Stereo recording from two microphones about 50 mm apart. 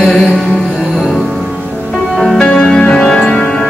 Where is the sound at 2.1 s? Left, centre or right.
Centre.